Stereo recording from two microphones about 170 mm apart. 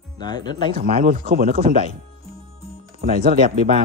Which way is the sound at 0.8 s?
55° right (ahead or behind).